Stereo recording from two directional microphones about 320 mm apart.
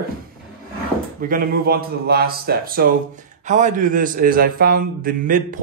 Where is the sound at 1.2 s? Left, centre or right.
Right.